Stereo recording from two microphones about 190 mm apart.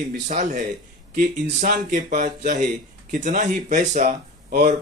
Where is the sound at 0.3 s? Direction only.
40° right (ahead or behind).